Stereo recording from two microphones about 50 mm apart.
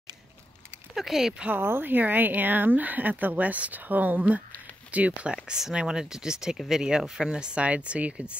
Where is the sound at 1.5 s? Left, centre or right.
Right.